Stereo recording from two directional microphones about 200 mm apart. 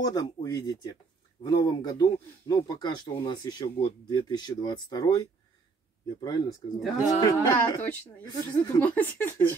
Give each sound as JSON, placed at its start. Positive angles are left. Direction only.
{"t": 0.0, "sound": "speech", "side_deg": 20}
{"t": 6.8, "sound": "speech", "side_deg": 0}
{"t": 7.1, "sound": "speech", "side_deg": 20}